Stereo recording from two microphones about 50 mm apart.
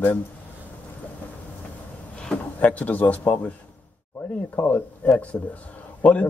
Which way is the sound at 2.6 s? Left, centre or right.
Left.